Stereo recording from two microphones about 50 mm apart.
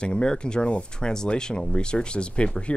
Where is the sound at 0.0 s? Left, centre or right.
Centre.